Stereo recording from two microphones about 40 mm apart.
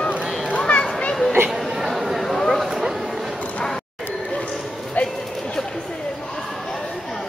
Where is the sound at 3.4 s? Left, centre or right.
Left.